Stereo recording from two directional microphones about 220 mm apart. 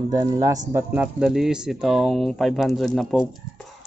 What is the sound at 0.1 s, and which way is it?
Speech, 15° right (ahead or behind).